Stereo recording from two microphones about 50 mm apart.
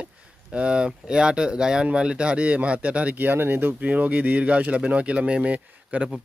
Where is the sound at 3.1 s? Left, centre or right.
Right.